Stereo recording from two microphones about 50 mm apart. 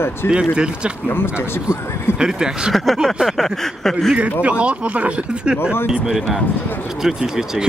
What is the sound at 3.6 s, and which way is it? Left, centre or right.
Speech, centre.